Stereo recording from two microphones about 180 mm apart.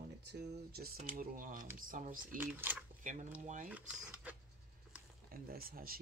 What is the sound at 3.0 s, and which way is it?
Speech, 45° right (ahead or behind).